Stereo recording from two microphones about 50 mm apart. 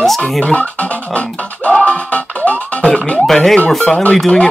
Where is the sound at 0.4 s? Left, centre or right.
Left.